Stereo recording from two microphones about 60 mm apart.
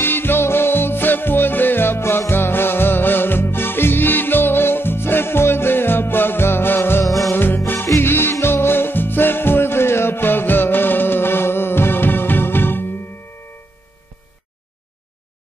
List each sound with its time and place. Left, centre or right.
0.0 s music: left
7.1 s music: centre
7.3 s music: left